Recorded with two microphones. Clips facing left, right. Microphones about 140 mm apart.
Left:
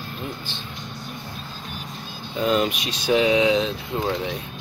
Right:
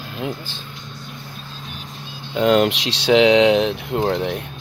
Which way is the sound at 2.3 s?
75° right (ahead or behind).